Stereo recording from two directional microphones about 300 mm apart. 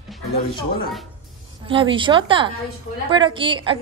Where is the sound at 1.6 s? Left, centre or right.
Centre.